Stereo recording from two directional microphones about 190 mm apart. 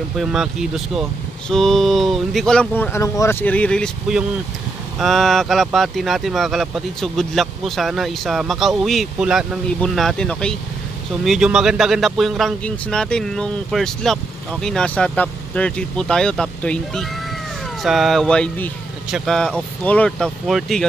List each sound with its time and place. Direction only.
0.2 s speech: centre (ahead or behind)